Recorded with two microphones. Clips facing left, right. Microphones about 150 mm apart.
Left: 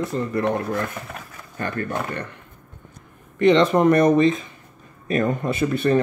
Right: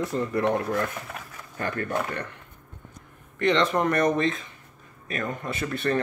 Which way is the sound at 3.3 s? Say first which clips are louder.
Left 7 dB; 15° left (ahead or behind).